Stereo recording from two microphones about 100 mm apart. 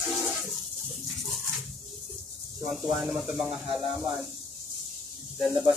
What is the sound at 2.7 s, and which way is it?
Speech, centre (ahead or behind).